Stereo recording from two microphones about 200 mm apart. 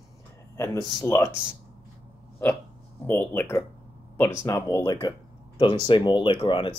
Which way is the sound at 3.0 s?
10° left (ahead or behind).